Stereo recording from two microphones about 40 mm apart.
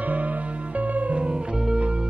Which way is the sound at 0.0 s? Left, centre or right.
Right.